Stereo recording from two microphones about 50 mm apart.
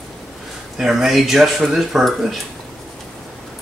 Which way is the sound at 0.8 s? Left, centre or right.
Centre.